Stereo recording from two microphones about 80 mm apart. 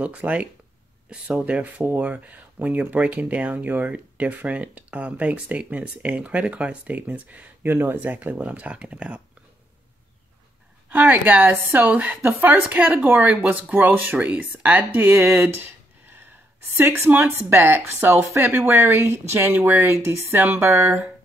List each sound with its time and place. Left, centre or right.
0.0 s speech: centre
10.9 s speech: centre
16.7 s speech: right